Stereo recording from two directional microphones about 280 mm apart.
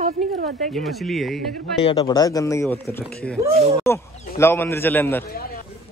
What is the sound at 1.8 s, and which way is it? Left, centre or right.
Speech, centre.